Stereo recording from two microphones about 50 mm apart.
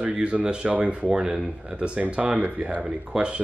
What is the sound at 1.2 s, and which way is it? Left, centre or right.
Speech, centre.